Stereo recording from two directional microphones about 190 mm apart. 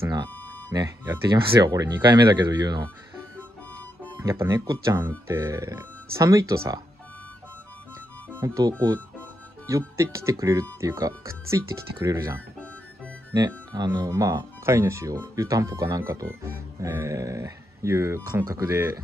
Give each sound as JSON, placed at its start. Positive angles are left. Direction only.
{"t": 0.0, "sound": "speech", "side_deg": -20}
{"t": 4.2, "sound": "speech", "side_deg": -15}
{"t": 8.4, "sound": "speech", "side_deg": -15}